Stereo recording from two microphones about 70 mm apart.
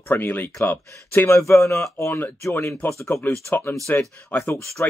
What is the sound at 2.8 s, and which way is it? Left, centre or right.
Speech, left.